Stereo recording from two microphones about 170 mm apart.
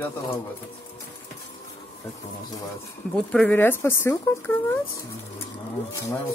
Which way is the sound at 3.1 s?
5° left (ahead or behind).